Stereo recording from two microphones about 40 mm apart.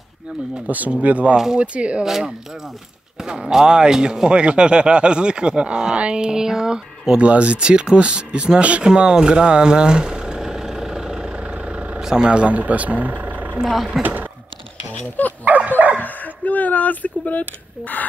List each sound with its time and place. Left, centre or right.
0.7 s speech: right
1.3 s speech: centre
1.6 s speech: right
2.0 s speech: centre
7.2 s speech: right
8.8 s vehicle: right
12.0 s speech: centre; by 13.6 s right
14.0 s speech: centre
15.4 s dog: right
16.0 s speech: left